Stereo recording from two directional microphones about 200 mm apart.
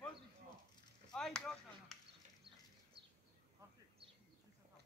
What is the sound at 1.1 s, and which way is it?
Chop, 5° left (ahead or behind).